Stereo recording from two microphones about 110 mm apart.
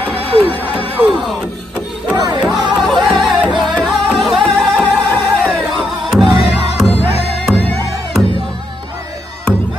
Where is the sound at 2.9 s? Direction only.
5° left (ahead or behind).